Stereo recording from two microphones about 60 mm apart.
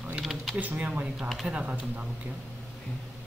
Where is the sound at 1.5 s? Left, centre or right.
Centre.